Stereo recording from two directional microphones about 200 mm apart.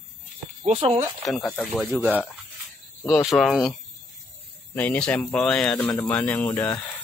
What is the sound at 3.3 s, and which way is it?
Speech, centre (ahead or behind).